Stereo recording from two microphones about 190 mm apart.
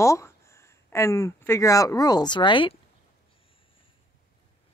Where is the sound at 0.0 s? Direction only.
15° left (ahead or behind).